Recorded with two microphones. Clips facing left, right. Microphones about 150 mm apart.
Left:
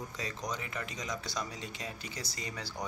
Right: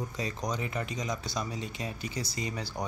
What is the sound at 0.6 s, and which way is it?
Speech, 25° right (ahead or behind).